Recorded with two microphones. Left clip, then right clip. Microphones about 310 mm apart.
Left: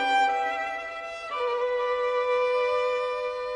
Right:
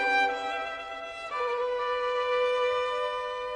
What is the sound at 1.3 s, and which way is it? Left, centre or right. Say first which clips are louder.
Music: left 3 dB; left.